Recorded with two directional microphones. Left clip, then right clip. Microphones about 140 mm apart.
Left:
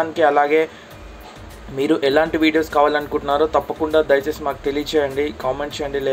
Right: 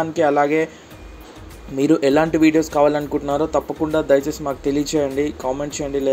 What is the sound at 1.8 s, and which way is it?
Speech, 40° right (ahead or behind).